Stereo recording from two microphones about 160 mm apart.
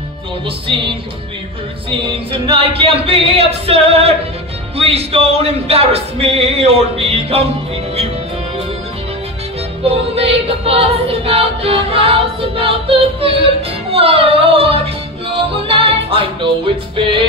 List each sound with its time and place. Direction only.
1.9 s a capella: 35° right (ahead or behind)
9.8 s a capella: 40° right (ahead or behind)
15.3 s music: 35° right (ahead or behind)